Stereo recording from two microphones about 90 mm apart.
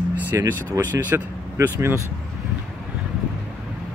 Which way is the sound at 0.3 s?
35° right (ahead or behind).